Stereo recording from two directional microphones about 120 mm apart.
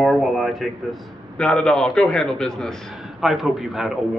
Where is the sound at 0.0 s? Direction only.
Centre (ahead or behind).